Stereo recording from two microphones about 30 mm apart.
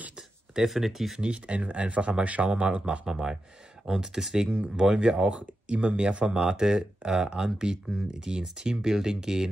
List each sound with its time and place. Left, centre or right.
0.7 s speech: centre
1.2 s speech: right
1.6 s speech: right
2.6 s speech: right
3.1 s speech: right